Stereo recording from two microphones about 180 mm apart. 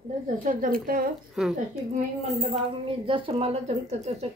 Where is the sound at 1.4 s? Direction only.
5° right (ahead or behind).